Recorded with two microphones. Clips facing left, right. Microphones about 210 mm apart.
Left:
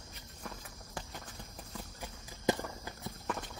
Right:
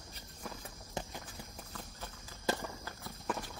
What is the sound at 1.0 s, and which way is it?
Clip-clop, 20° right (ahead or behind).